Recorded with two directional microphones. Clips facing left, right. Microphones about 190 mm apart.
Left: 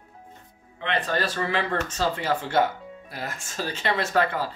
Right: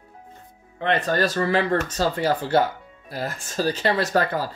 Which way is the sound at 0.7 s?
45° right (ahead or behind).